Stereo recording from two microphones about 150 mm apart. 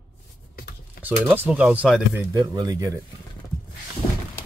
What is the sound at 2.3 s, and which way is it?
Speech, 30° right (ahead or behind).